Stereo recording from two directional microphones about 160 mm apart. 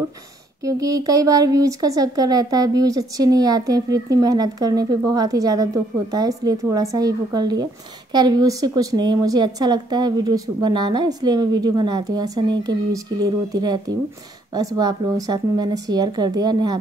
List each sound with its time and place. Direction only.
0.7 s speech: 20° right (ahead or behind)